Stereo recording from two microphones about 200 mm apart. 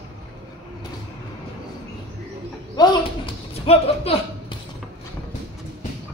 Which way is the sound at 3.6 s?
30° left (ahead or behind).